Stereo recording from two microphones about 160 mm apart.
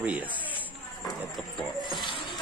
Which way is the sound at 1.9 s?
30° left (ahead or behind).